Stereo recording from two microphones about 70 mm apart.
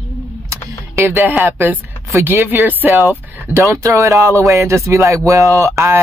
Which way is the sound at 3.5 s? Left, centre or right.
Right.